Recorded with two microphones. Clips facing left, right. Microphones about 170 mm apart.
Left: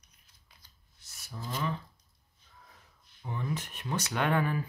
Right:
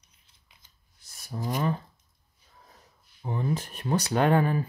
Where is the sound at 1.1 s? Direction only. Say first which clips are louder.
Right 8 dB; 35° right (ahead or behind).